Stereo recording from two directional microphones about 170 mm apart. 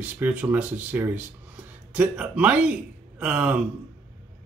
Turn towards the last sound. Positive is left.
turn(degrees=-5)  # may be behind; listen again after turning